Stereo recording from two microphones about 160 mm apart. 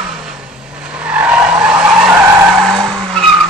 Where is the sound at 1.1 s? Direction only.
5° right (ahead or behind).